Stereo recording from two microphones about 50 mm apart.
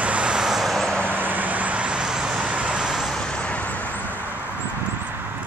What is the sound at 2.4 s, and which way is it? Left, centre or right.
Vehicle, right.